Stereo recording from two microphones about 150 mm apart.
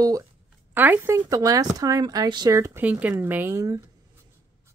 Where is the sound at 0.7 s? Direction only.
15° right (ahead or behind).